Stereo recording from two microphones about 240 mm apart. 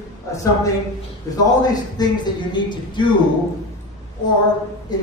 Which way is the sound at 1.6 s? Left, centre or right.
Centre.